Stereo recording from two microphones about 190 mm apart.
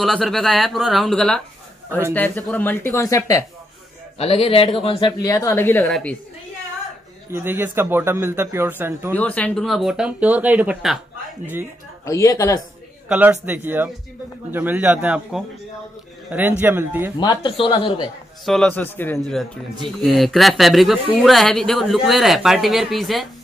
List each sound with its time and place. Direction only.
0.0 s a man's voice: centre (ahead or behind)
4.2 s speech: 30° left (ahead or behind); by 5.9 s 15° left (ahead or behind)
5.9 s a man's voice: centre (ahead or behind)
7.2 s a man's voice: 10° right (ahead or behind)
9.1 s a man's voice: 10° left (ahead or behind)
12.0 s speech: 15° left (ahead or behind)
13.1 s a man's voice: 5° right (ahead or behind)
17.2 s speech: 25° left (ahead or behind)
18.4 s a man's voice: centre (ahead or behind)